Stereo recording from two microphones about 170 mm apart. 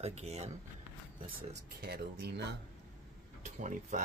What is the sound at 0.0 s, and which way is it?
Speech, 40° right (ahead or behind).